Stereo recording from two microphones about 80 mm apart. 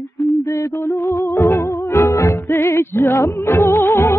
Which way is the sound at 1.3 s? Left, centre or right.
Left.